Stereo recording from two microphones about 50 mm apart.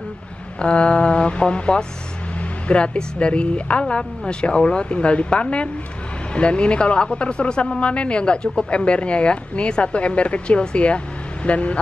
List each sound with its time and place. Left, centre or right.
0.6 s speech: left